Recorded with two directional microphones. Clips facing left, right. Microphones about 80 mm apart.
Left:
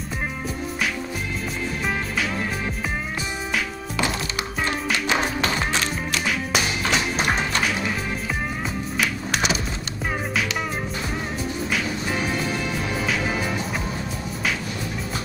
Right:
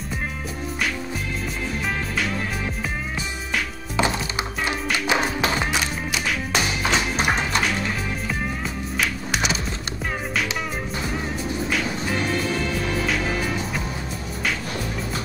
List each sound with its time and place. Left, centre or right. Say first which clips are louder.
3.9 s music: right 3 dB; right
4.9 s music: right 2 dB; centre
6.2 s music: even; centre
8.9 s music: even; centre